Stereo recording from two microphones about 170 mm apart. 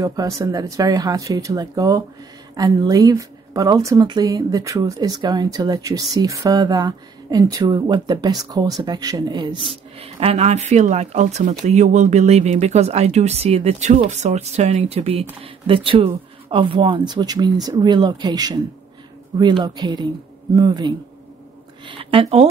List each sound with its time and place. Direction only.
0.0 s speech: 20° right (ahead or behind)
9.9 s speech: 35° right (ahead or behind)